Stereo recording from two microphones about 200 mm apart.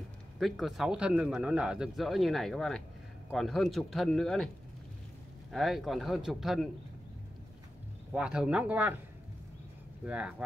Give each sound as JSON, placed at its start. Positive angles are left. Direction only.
{"t": 0.4, "sound": "speech", "side_deg": 0}
{"t": 5.5, "sound": "speech", "side_deg": 0}
{"t": 8.1, "sound": "speech", "side_deg": -5}
{"t": 10.0, "sound": "speech", "side_deg": -5}